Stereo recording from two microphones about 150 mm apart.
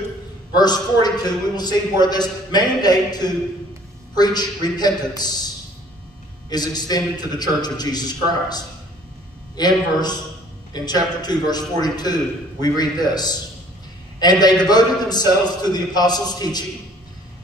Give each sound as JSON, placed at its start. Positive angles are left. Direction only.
{"t": 0.6, "sound": "a man's voice", "side_deg": 25}
{"t": 6.5, "sound": "a man's voice", "side_deg": 25}
{"t": 11.1, "sound": "a man's voice", "side_deg": 25}